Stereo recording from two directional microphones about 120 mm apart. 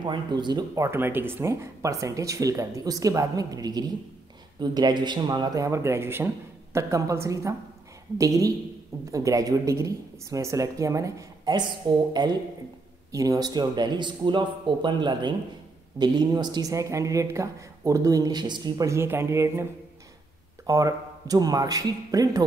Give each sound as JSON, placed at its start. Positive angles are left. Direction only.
{"t": 0.0, "sound": "speech", "side_deg": -40}
{"t": 0.8, "sound": "a woman's voice", "side_deg": -20}